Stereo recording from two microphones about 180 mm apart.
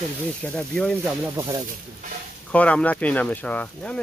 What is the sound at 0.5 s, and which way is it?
Speech, 5° left (ahead or behind).